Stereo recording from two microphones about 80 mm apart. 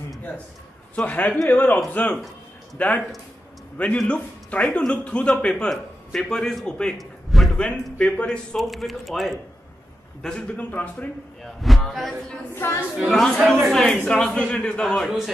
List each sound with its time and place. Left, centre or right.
0.9 s a man's voice: centre
7.0 s a sound: centre
7.5 s a man's voice: centre
8.5 s speech: centre
10.2 s speech: centre
11.4 s speech: centre
12.5 s a woman's voice: left
12.9 s a man's voice: centre
15.0 s speech: centre